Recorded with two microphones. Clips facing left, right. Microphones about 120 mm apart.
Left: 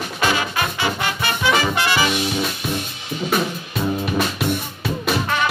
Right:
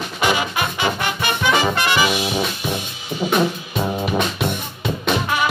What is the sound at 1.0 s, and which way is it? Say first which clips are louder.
Music: right 1 dB; 20° right (ahead or behind).